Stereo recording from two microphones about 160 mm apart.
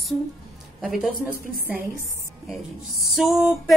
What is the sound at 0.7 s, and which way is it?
Speech, centre (ahead or behind).